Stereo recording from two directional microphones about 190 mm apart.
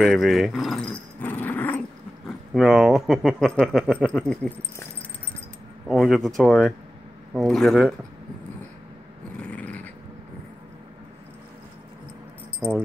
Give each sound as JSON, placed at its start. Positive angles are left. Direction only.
{"t": 0.0, "sound": "speech", "side_deg": 0}
{"t": 2.5, "sound": "speech", "side_deg": 0}
{"t": 5.9, "sound": "speech", "side_deg": 0}
{"t": 9.4, "sound": "cat", "side_deg": 5}
{"t": 12.5, "sound": "speech", "side_deg": -10}